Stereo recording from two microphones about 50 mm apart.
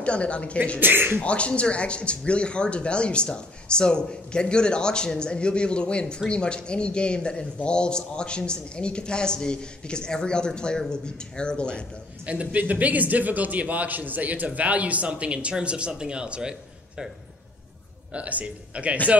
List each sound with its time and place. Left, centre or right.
0.0 s speech: left
0.7 s speech: right
1.2 s speech: left
12.3 s a man's voice: right
18.1 s a man's voice: right